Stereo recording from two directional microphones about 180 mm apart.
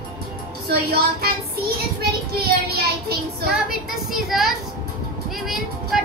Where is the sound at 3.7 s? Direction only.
Centre (ahead or behind).